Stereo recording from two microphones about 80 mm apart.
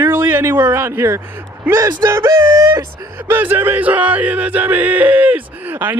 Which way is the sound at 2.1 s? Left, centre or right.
Right.